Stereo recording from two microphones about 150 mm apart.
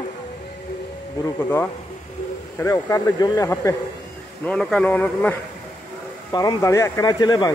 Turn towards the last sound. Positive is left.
turn(degrees=25)  # may be behind; listen again after turning